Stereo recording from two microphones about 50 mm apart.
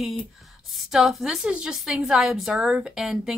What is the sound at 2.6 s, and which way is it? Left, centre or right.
Speech, centre.